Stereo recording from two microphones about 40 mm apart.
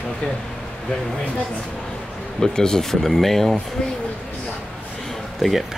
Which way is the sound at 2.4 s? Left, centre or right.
Centre.